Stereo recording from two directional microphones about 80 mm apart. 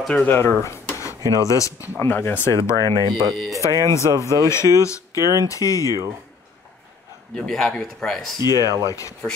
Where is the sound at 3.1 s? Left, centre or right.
Right.